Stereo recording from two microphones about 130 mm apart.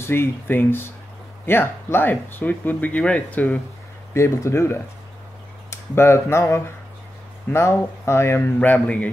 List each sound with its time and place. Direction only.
0.0 s speech: 20° left (ahead or behind)